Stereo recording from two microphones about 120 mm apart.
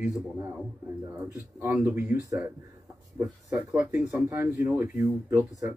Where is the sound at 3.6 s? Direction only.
10° right (ahead or behind).